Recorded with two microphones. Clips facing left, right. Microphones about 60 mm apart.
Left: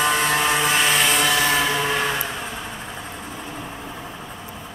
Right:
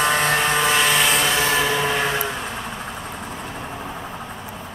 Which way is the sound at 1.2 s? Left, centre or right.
Right.